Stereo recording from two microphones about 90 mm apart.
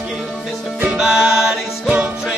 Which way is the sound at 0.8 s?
10° right (ahead or behind).